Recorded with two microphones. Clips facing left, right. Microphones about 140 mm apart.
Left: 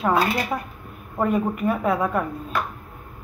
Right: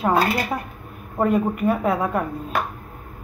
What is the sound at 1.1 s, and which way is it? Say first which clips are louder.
A woman's voice: right 2 dB; 5° right (ahead or behind).